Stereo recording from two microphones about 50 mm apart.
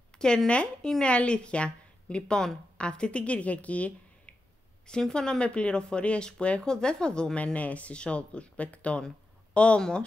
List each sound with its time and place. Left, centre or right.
0.1 s a sound: centre
1.0 s a woman's voice: left
4.8 s speech: centre